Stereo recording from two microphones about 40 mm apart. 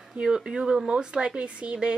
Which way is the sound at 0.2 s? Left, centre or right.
Centre.